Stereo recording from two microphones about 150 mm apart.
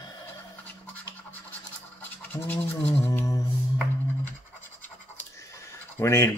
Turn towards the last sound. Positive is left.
turn(degrees=20)  # may be behind; listen again after turning